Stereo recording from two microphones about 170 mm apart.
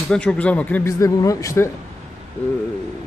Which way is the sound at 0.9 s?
20° left (ahead or behind).